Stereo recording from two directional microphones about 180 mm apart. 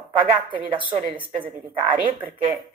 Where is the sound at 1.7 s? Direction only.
45° right (ahead or behind).